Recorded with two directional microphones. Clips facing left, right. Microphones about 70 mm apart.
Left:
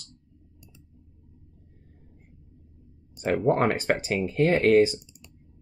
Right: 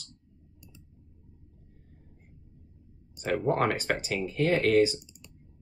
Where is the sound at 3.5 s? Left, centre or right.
Left.